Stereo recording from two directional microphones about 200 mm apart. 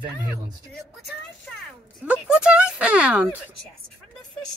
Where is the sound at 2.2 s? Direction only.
5° right (ahead or behind).